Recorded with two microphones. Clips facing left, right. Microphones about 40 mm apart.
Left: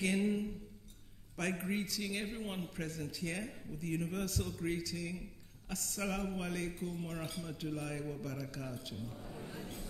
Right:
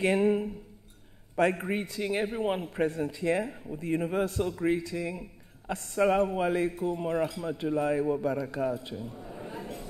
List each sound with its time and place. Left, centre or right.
0.0 s a man's voice: right